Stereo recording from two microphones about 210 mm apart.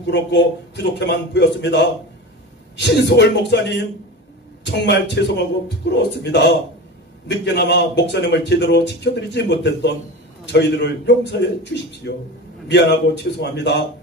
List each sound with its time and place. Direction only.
0.0 s a man's voice: 55° left (ahead or behind)